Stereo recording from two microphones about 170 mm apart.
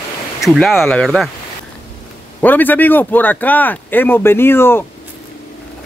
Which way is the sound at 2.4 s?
10° left (ahead or behind).